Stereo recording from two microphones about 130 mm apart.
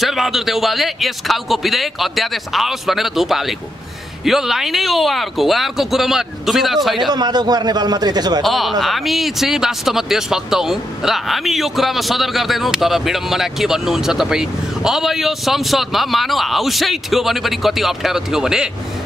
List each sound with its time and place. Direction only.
0.0 s speech: centre (ahead or behind)
7.1 s a man's voice: 35° right (ahead or behind)
8.5 s speech: centre (ahead or behind)